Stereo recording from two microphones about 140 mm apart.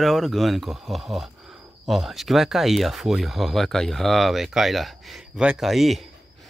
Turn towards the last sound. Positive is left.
turn(degrees=0)  # may be behind; listen again after turning